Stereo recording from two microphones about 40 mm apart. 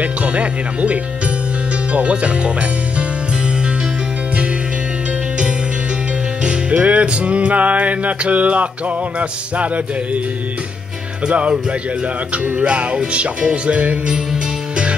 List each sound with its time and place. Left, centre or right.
0.0 s music: right
6.4 s music: right
11.2 s music: right